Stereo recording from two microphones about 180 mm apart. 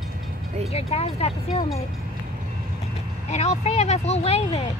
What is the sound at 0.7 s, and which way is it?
Speech, 35° left (ahead or behind).